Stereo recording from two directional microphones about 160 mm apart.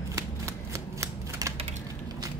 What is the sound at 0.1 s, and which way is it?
Shuffling cards, 20° right (ahead or behind).